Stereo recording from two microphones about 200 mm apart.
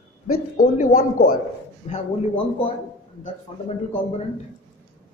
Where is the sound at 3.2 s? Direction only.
30° left (ahead or behind).